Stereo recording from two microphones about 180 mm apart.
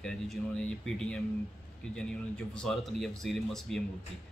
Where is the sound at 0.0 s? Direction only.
5° left (ahead or behind).